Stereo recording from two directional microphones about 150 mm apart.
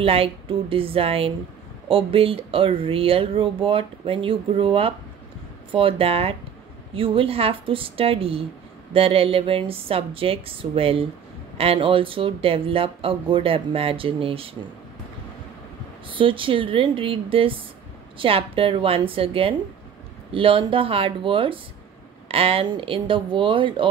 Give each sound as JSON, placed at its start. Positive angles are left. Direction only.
{"t": 0.0, "sound": "speech", "side_deg": -40}
{"t": 16.1, "sound": "speech", "side_deg": -35}